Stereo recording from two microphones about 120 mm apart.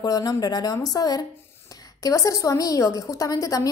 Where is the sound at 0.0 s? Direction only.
30° left (ahead or behind).